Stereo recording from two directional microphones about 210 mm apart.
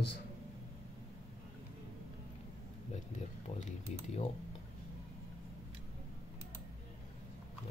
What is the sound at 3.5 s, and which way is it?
Speech, 35° left (ahead or behind).